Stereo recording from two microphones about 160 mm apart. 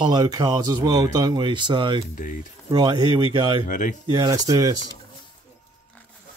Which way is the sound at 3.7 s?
55° left (ahead or behind).